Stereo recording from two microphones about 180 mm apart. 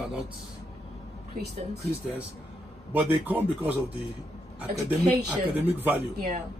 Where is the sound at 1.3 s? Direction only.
65° right (ahead or behind).